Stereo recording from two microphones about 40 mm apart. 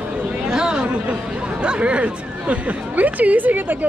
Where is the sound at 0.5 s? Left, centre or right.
Centre.